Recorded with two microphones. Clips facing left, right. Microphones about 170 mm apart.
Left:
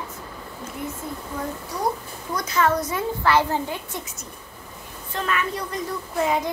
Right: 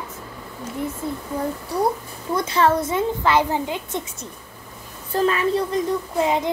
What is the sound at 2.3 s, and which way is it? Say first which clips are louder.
A child's voice: right 3 dB; 30° right (ahead or behind).